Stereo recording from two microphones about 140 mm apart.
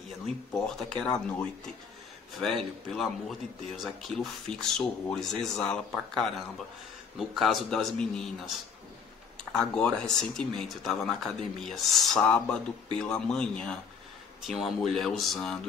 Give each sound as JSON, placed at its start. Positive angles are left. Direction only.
{"t": 0.5, "sound": "speech", "side_deg": 5}
{"t": 2.4, "sound": "speech", "side_deg": 0}